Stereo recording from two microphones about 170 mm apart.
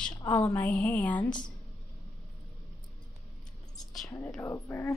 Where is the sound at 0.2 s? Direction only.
15° left (ahead or behind).